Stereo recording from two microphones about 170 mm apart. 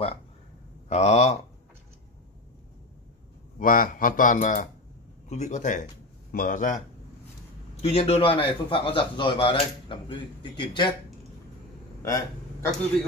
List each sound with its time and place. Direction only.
0.8 s speech: 40° left (ahead or behind)
3.5 s speech: 55° left (ahead or behind)
7.8 s speech: 35° left (ahead or behind)
12.0 s a sound: 15° left (ahead or behind)